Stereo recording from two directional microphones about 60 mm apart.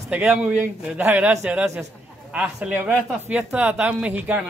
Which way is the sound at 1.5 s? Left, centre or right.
Right.